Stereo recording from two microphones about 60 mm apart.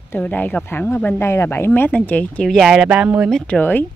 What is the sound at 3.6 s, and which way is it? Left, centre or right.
Speech, left.